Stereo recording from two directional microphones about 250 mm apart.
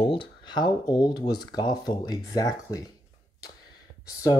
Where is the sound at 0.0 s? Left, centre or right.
Centre.